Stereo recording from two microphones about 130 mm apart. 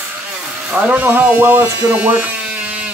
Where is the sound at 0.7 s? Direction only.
15° right (ahead or behind).